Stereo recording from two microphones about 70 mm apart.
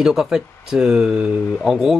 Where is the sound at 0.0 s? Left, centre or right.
Centre.